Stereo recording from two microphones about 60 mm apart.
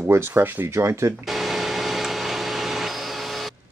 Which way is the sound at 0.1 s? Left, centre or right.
Right.